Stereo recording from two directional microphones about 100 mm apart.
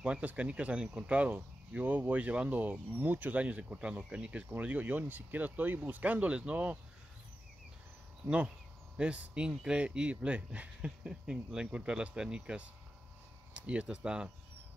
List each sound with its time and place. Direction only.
0.0 s speech: 15° right (ahead or behind)
8.9 s speech: 10° right (ahead or behind)